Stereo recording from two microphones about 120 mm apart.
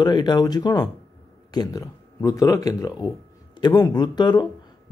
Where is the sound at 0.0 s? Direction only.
35° left (ahead or behind).